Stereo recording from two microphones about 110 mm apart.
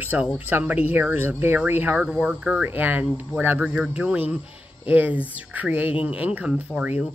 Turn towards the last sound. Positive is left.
turn(degrees=-10)  # may be behind; listen again after turning